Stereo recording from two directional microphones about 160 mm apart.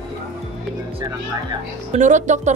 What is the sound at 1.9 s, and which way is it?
Speech, 50° right (ahead or behind).